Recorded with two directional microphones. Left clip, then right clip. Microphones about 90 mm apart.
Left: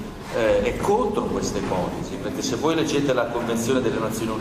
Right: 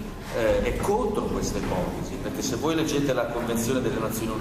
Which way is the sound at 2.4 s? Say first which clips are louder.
Left 4 dB; 40° left (ahead or behind).